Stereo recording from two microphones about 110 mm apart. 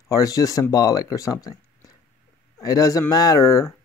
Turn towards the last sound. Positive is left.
turn(degrees=30)  # may be behind; listen again after turning